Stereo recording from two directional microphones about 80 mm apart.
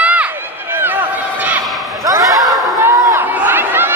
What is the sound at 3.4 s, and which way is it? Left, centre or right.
Chatter, right.